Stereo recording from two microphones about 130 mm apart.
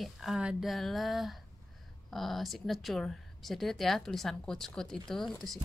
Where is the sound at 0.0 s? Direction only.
Centre (ahead or behind).